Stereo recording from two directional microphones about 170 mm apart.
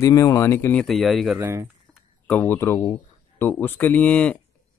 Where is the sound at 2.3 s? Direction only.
10° left (ahead or behind).